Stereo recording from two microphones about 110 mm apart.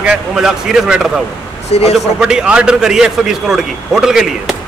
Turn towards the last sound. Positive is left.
turn(degrees=-5)  # may be behind; listen again after turning